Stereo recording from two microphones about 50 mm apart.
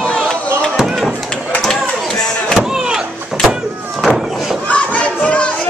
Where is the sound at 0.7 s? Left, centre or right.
Centre.